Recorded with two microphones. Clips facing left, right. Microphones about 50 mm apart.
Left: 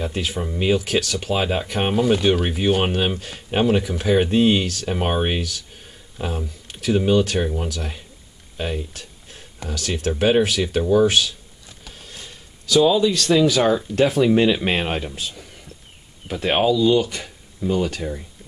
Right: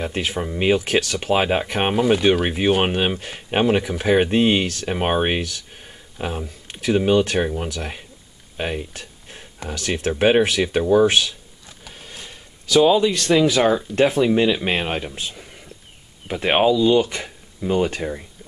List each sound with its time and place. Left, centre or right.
0.0 s speech: right
8.5 s a sound: right
9.6 s speech: right
11.8 s a sound: centre
13.9 s speech: centre
14.2 s speech: centre
15.1 s speech: right